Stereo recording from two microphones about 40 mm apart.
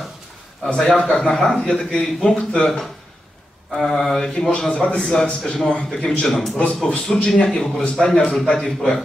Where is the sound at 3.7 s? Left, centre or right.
Centre.